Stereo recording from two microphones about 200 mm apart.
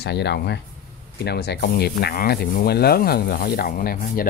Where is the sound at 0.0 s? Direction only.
55° left (ahead or behind).